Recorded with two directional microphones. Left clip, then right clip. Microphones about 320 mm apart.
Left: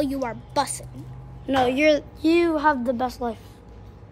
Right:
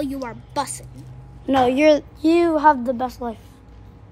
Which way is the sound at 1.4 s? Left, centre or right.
Centre.